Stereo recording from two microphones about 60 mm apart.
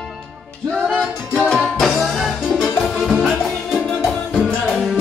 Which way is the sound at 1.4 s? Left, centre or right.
Centre.